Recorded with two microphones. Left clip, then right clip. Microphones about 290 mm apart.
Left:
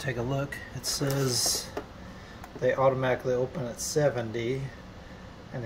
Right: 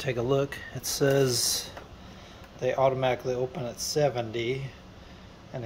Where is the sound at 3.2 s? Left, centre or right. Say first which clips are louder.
Left 1 dB; centre.